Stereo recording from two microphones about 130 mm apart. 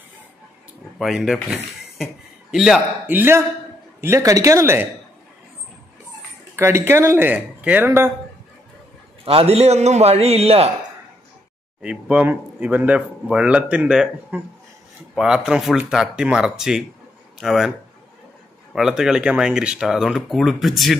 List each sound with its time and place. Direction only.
0.9 s speech: centre (ahead or behind)
3.1 s speech: 15° right (ahead or behind)
6.5 s speech: 20° right (ahead or behind)
9.2 s a man's voice: 50° right (ahead or behind)
11.8 s speech: 10° right (ahead or behind)
18.8 s speech: 5° right (ahead or behind)